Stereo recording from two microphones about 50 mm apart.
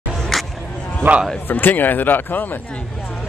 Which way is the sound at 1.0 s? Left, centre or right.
Right.